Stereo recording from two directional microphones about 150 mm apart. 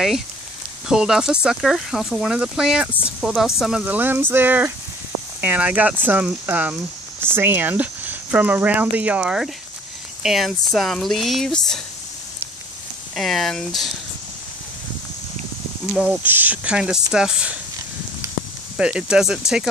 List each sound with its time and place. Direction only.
0.8 s speech: 5° right (ahead or behind)
13.1 s speech: centre (ahead or behind)
15.9 s speech: 5° right (ahead or behind)
18.2 s a sound: 20° right (ahead or behind)
18.8 s speech: 5° right (ahead or behind)